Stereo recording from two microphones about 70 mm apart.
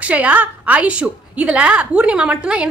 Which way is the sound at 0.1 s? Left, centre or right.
Right.